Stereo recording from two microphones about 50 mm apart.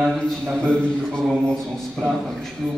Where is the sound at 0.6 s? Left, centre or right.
Centre.